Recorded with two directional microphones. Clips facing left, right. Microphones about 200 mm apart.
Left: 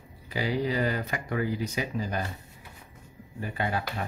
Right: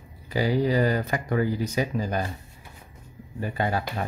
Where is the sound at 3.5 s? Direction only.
40° right (ahead or behind).